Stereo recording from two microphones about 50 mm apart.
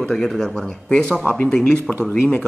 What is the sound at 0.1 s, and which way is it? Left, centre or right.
Speech, centre.